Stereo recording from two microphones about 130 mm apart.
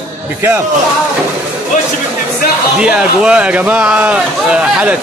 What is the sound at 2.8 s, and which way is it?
A man's voice, 10° right (ahead or behind).